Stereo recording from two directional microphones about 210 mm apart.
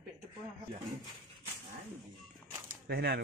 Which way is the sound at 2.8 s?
50° right (ahead or behind).